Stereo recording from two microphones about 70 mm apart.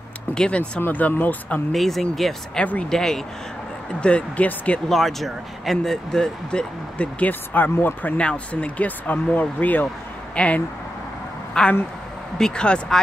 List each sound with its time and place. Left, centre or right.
0.3 s speech: centre
1.7 s speech: centre
2.6 s speech: centre
2.9 s speech: centre
4.0 s speech: centre
4.8 s speech: centre; by 8.1 s left
8.2 s speech: centre